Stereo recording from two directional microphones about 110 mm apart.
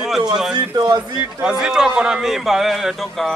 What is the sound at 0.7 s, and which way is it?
Speech, 40° right (ahead or behind).